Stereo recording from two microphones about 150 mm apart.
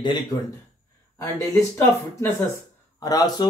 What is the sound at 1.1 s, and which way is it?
Speech, 20° left (ahead or behind).